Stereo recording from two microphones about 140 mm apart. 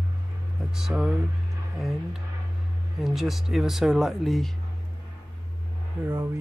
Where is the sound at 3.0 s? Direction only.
Centre (ahead or behind).